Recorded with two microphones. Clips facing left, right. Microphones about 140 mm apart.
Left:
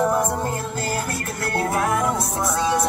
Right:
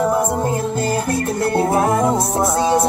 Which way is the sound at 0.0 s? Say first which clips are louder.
Right 3 dB; 10° right (ahead or behind).